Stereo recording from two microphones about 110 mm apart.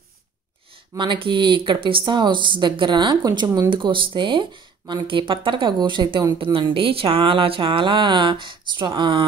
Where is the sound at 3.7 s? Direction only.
50° right (ahead or behind).